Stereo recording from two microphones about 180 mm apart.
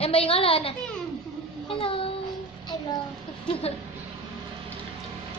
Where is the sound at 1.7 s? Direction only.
30° left (ahead or behind).